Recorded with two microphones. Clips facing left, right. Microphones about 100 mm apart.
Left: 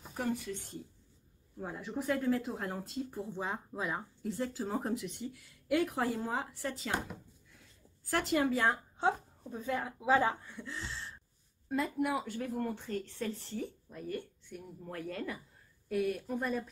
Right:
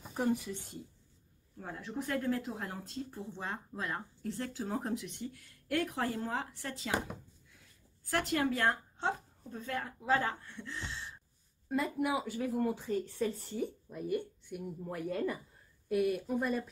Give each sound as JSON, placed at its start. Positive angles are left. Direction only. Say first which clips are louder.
{"t": 0.1, "sound": "speech", "louder": "right 3 dB", "side_deg": -20}
{"t": 1.6, "sound": "speech", "louder": "left 2 dB", "side_deg": 5}